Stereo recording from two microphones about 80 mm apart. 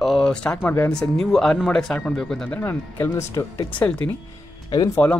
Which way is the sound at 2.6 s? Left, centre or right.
Left.